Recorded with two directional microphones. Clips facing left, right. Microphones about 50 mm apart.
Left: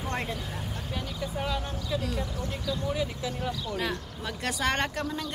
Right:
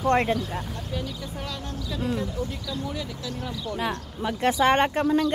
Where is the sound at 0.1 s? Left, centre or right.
Right.